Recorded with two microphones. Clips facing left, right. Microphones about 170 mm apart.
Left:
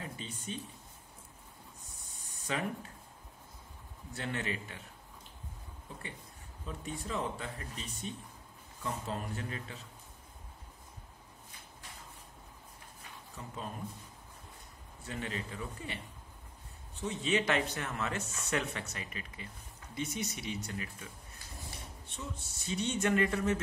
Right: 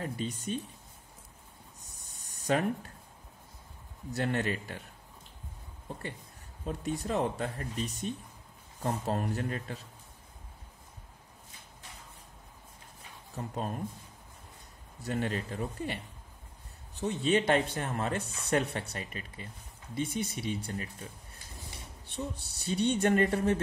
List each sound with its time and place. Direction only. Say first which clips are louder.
0.0 s speech: right 8 dB; 40° right (ahead or behind)
1.8 s a sound: even; 40° right (ahead or behind)
4.1 s speech: right 7 dB; 40° right (ahead or behind)
6.6 s speech: right 7 dB; 40° right (ahead or behind)
13.3 s speech: right 8 dB; 40° right (ahead or behind)
15.0 s speech: right 7 dB; 40° right (ahead or behind)
22.1 s speech: right 7 dB; 35° right (ahead or behind)